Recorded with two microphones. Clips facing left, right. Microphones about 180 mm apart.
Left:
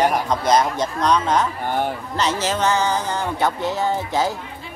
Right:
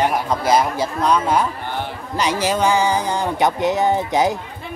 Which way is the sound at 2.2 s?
10° right (ahead or behind).